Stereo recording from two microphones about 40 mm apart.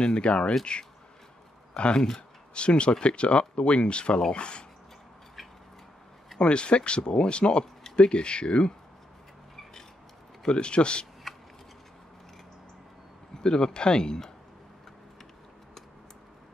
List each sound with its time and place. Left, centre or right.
0.0 s speech: centre
0.3 s speech: left
2.0 s speech: centre
2.5 s speech: left
6.3 s speech: left
10.4 s speech: left
13.3 s speech: centre